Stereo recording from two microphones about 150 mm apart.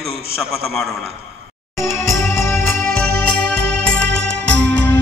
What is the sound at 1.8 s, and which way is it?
Music, 20° left (ahead or behind).